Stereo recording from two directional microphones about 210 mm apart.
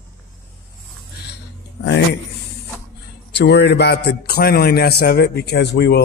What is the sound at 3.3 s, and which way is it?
Speech, 55° left (ahead or behind).